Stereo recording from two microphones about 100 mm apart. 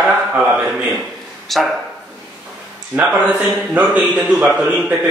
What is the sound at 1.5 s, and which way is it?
Speech, centre (ahead or behind).